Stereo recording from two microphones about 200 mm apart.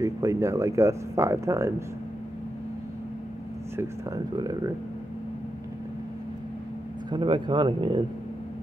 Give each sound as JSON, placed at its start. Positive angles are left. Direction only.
{"t": 0.0, "sound": "speech", "side_deg": -15}
{"t": 3.7, "sound": "speech", "side_deg": -15}
{"t": 7.1, "sound": "speech", "side_deg": -25}